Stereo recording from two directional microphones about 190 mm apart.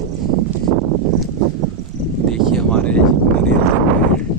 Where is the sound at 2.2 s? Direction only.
5° left (ahead or behind).